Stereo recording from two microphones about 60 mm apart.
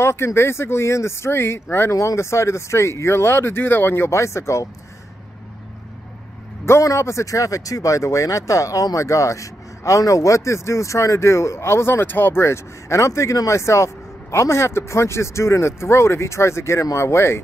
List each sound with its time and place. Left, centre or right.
0.0 s speech: left
1.9 s speech: left
4.1 s speech: left
6.6 s speech: left